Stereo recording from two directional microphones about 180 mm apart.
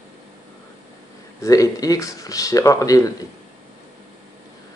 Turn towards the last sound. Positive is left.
turn(degrees=20)  # may be behind; listen again after turning